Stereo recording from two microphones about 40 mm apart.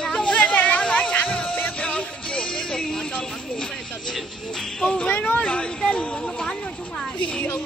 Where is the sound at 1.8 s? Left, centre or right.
Left.